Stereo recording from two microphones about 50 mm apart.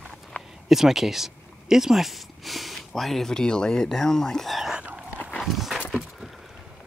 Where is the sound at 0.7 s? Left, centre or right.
Centre.